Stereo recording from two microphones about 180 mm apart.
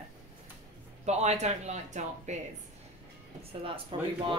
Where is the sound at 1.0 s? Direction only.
40° right (ahead or behind).